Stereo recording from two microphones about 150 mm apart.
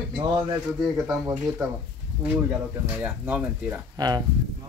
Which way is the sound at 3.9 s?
25° right (ahead or behind).